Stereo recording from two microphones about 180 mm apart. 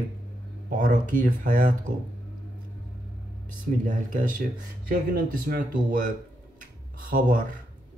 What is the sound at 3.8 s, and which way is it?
Speech, 45° right (ahead or behind).